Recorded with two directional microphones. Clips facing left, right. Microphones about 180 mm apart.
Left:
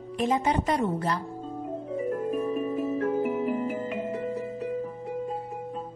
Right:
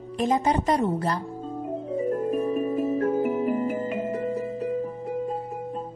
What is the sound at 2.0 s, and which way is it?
Music, 35° right (ahead or behind).